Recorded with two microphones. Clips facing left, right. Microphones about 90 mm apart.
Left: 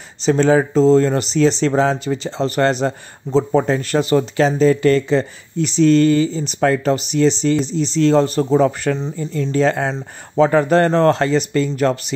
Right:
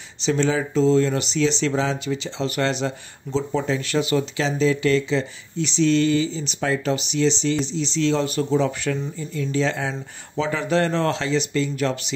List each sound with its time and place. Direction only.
0.2 s speech: 45° left (ahead or behind)